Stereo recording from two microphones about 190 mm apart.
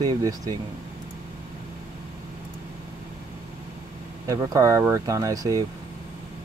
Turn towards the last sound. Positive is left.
turn(degrees=-20)  # may be behind; listen again after turning